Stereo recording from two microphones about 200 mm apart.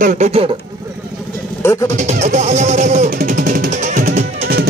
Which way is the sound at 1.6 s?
15° left (ahead or behind).